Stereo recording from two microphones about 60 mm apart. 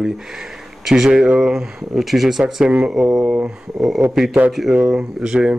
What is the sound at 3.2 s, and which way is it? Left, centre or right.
Speech, centre.